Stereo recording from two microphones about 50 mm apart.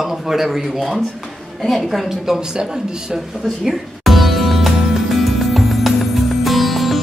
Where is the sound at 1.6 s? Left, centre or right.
Centre.